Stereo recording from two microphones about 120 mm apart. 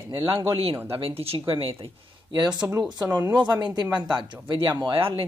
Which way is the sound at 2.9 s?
35° right (ahead or behind).